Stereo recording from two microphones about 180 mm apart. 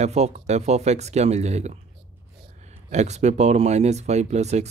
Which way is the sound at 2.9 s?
40° right (ahead or behind).